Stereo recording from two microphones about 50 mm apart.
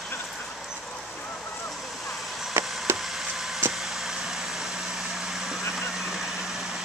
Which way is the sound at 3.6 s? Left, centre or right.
Right.